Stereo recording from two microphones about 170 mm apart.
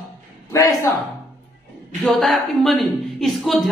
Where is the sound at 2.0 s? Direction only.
Centre (ahead or behind).